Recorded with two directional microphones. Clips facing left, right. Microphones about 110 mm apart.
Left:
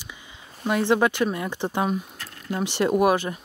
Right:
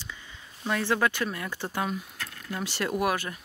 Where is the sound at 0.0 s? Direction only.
15° left (ahead or behind).